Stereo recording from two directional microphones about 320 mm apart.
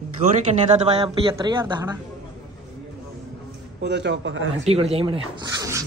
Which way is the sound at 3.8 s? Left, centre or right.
Right.